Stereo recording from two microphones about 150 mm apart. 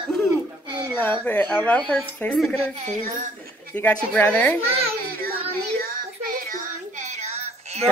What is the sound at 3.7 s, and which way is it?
Speech, 10° left (ahead or behind).